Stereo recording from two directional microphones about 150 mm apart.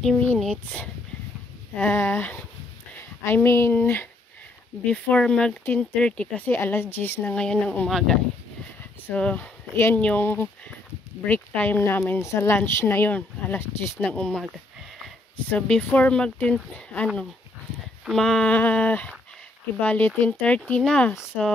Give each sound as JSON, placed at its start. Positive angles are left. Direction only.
{"t": 0.0, "sound": "speech", "side_deg": 5}
{"t": 15.5, "sound": "speech", "side_deg": 10}